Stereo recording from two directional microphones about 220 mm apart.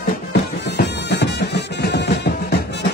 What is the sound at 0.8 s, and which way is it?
Music, 50° left (ahead or behind).